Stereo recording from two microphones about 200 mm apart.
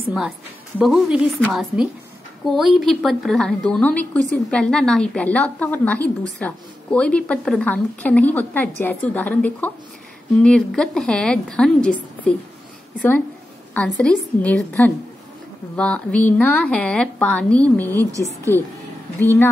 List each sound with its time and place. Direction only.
0.7 s a woman's voice: centre (ahead or behind)
13.7 s a woman's voice: 5° left (ahead or behind)
17.9 s a woman's voice: 15° right (ahead or behind)
19.1 s speech: 10° left (ahead or behind)